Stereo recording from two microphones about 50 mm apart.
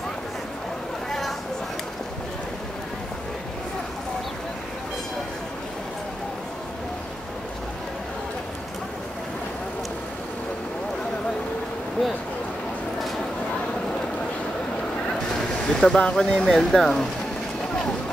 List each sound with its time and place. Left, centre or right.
15.7 s speech: centre
16.3 s speech: centre